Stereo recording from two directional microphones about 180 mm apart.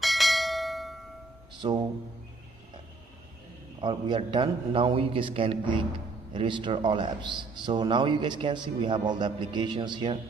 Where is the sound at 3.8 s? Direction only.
25° right (ahead or behind).